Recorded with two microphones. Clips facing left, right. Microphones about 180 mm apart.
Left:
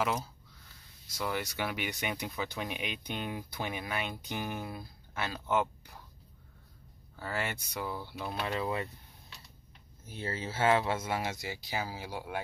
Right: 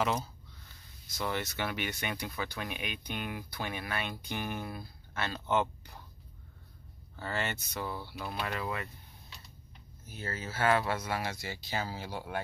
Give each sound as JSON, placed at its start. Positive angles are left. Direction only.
{"t": 0.0, "sound": "speech", "side_deg": 5}
{"t": 7.2, "sound": "speech", "side_deg": 5}
{"t": 8.5, "sound": "speech", "side_deg": 25}
{"t": 10.0, "sound": "speech", "side_deg": 25}